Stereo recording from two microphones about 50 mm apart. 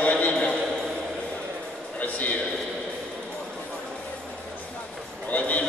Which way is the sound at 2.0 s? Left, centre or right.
Left.